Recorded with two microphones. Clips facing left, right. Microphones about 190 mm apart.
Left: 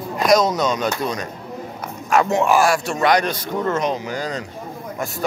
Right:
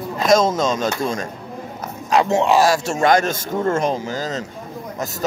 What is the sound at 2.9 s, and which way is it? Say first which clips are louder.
Speech: right 2 dB; 45° right (ahead or behind).